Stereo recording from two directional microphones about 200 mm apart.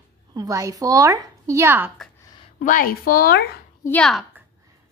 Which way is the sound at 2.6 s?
45° left (ahead or behind).